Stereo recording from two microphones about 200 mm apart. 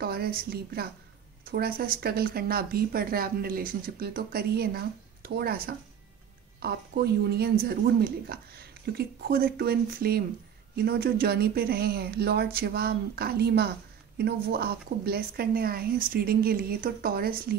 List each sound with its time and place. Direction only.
0.0 s speech: 50° right (ahead or behind)
6.6 s speech: 55° right (ahead or behind)